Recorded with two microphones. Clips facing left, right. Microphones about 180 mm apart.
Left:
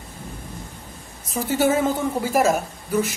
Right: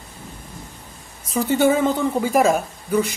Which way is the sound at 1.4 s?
5° left (ahead or behind).